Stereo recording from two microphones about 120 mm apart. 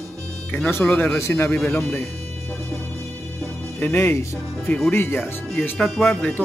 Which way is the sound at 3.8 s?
20° left (ahead or behind).